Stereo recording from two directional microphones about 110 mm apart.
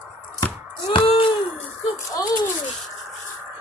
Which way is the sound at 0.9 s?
55° left (ahead or behind).